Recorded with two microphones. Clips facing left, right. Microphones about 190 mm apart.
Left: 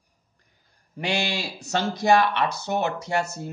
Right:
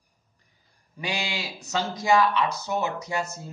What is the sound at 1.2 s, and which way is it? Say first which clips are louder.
Speech: left 4 dB; 65° left (ahead or behind).